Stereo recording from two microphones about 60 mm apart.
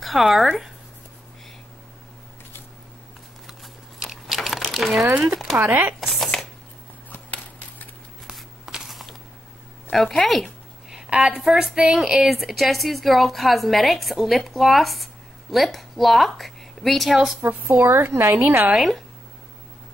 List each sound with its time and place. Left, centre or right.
0.0 s speech: centre
3.4 s biting: centre
4.4 s crumpling: centre
5.6 s speech: right
5.9 s shuffling cards: centre
7.1 s a sound: left
8.3 s a sound: centre
9.9 s a woman's voice: centre
10.9 s a woman's voice: centre
17.4 s speech: right
17.8 s speech: right
18.8 s a woman's voice: centre